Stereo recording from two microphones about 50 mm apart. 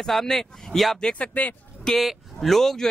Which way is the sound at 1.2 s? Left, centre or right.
Left.